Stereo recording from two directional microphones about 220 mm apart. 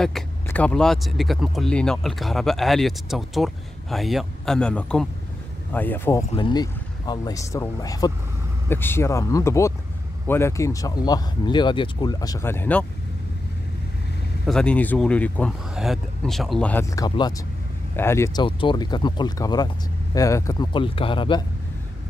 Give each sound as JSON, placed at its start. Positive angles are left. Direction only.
{"t": 0.0, "sound": "speech", "side_deg": 5}
{"t": 6.3, "sound": "speech", "side_deg": 20}
{"t": 14.4, "sound": "speech", "side_deg": 5}